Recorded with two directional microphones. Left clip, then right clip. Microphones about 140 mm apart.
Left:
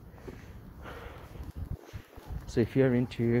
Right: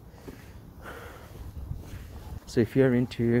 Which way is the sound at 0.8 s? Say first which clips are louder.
Right 3 dB; 30° right (ahead or behind).